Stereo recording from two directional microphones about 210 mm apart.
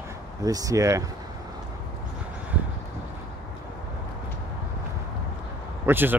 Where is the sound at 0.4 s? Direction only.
15° right (ahead or behind).